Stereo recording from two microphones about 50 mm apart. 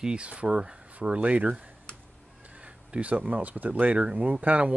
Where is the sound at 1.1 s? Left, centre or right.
Right.